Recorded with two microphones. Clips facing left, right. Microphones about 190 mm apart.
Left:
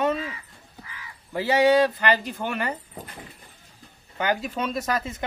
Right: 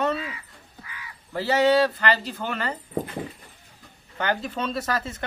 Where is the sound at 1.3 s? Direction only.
15° left (ahead or behind).